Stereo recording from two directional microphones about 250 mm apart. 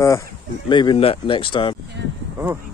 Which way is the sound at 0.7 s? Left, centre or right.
Centre.